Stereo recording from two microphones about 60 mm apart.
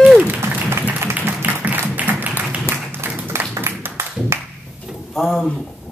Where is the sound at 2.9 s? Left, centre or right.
Right.